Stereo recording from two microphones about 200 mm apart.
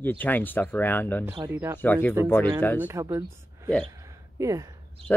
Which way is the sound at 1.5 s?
10° right (ahead or behind).